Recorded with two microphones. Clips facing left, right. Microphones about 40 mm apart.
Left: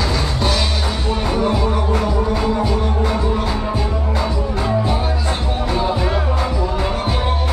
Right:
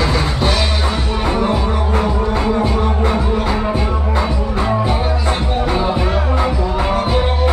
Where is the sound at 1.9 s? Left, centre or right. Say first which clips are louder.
Right 2 dB; centre.